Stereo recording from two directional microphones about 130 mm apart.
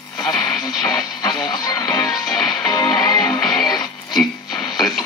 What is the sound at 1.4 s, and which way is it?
Music, 30° left (ahead or behind).